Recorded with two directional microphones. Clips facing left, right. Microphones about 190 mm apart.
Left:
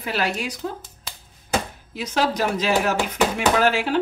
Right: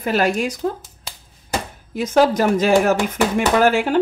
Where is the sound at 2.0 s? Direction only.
50° right (ahead or behind).